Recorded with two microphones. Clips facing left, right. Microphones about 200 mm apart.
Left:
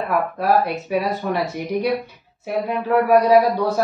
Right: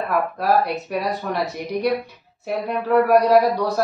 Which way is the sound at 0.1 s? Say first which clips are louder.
Left 1 dB; centre (ahead or behind).